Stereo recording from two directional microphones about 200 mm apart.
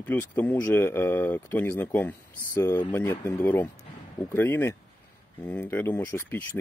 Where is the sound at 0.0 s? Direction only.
10° left (ahead or behind).